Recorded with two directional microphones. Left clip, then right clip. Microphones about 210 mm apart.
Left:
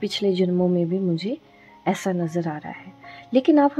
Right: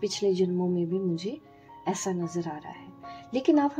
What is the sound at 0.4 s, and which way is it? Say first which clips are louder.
Speech: left 6 dB; 40° left (ahead or behind).